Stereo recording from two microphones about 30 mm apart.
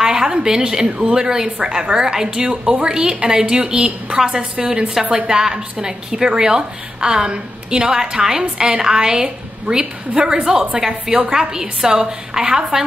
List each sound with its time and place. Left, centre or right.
0.1 s a woman's voice: right